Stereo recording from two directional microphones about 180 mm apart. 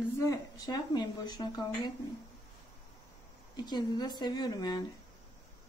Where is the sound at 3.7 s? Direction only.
25° left (ahead or behind).